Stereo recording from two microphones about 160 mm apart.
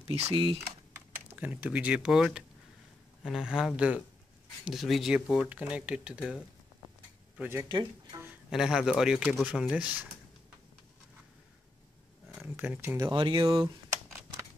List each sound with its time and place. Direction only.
0.0 s speech: 40° right (ahead or behind)
1.3 s speech: 10° right (ahead or behind)
7.6 s speech: 25° right (ahead or behind)
8.2 s speech: 5° right (ahead or behind)
12.5 s speech: 10° right (ahead or behind)
13.1 s speech: 30° right (ahead or behind)